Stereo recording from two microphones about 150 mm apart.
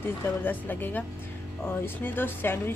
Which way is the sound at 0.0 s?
15° left (ahead or behind).